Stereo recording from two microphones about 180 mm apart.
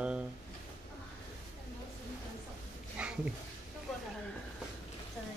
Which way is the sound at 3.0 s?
5° right (ahead or behind).